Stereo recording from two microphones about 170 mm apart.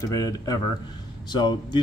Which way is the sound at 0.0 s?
20° left (ahead or behind).